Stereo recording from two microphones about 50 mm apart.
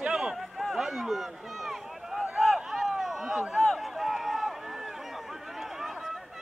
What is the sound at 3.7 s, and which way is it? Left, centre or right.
Run, centre.